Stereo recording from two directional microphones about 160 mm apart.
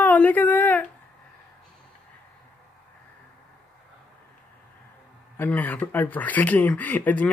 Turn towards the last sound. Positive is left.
turn(degrees=10)  # may be behind; listen again after turning